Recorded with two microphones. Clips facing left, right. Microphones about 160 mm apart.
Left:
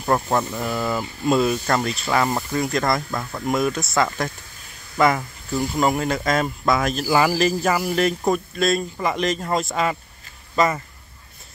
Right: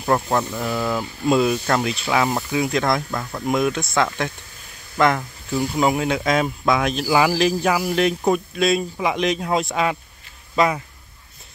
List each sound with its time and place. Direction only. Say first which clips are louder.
0.0 s speech: right 1 dB; centre (ahead or behind)